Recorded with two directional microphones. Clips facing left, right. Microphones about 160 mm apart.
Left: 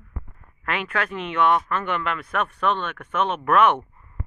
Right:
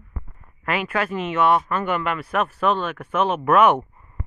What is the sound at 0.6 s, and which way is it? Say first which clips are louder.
Speech: right 3 dB; 5° right (ahead or behind).